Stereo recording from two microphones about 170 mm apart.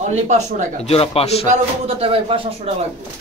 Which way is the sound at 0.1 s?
45° right (ahead or behind).